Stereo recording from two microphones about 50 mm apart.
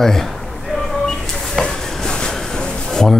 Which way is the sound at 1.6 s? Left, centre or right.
Centre.